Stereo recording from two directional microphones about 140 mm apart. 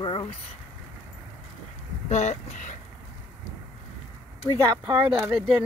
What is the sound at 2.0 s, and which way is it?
Speech, 55° left (ahead or behind).